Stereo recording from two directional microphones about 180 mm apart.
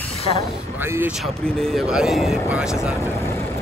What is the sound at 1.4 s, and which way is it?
Speech, 5° left (ahead or behind).